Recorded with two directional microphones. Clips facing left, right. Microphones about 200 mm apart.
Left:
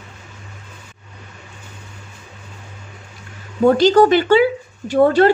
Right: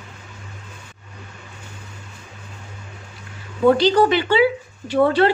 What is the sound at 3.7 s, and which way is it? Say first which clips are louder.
Speech: left 4 dB; 45° left (ahead or behind).